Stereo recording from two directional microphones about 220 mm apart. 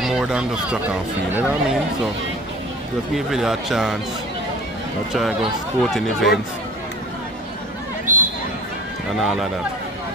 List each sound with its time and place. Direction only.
0.0 s speech: 5° right (ahead or behind)
3.2 s speech: centre (ahead or behind)
5.1 s speech: centre (ahead or behind)
8.1 s a sound: 35° right (ahead or behind)
9.2 s speech: centre (ahead or behind)